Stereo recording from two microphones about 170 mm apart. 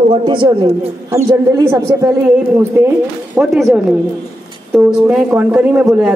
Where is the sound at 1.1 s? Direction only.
20° right (ahead or behind).